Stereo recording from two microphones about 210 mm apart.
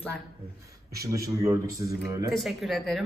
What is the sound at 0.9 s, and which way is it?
A man's voice, 15° right (ahead or behind).